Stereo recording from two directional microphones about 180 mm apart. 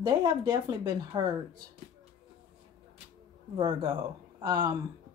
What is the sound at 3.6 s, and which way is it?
Speech, 25° right (ahead or behind).